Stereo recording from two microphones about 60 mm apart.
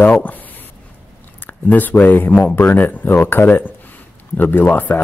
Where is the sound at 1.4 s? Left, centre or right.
Left.